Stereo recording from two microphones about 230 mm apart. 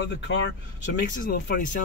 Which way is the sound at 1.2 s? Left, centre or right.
Left.